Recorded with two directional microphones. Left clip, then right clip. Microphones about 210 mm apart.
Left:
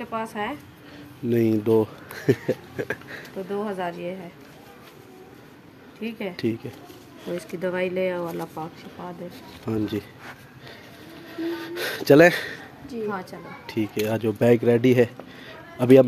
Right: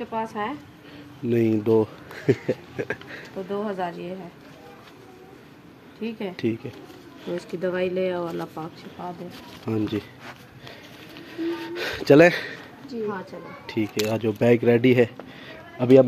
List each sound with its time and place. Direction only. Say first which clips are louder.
0.1 s speech: even; 15° left (ahead or behind)
1.3 s speech: even; centre (ahead or behind)
5.9 s speech: even; centre (ahead or behind)
11.3 s speech: right 1 dB; centre (ahead or behind)
13.1 s a woman's voice: left 1 dB; 30° left (ahead or behind)
13.7 s speech: even; centre (ahead or behind)